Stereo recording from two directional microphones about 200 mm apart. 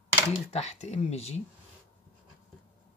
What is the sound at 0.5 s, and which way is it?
Speech, 35° left (ahead or behind).